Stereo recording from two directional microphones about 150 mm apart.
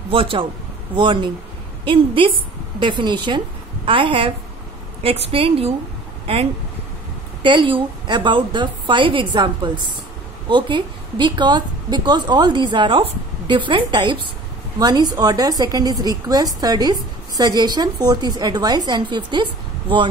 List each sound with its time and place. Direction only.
0.1 s a woman's voice: 35° right (ahead or behind)